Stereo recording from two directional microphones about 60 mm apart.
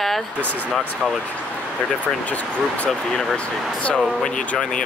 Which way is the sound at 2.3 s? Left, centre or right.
Left.